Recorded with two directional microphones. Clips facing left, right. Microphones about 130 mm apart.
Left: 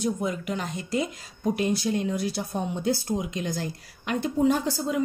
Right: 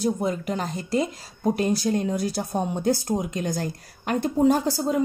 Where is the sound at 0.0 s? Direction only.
35° right (ahead or behind).